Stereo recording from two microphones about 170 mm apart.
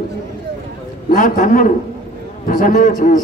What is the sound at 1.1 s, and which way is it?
A man's voice, 50° left (ahead or behind).